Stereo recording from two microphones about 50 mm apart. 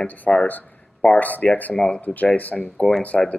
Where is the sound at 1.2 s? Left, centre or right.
Left.